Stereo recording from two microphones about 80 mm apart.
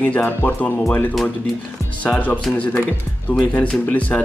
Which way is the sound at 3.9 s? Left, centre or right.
Centre.